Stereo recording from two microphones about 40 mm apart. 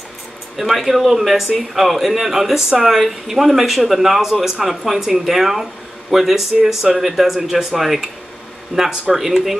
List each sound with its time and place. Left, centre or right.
0.6 s speech: centre
8.7 s speech: right
9.1 s speech: centre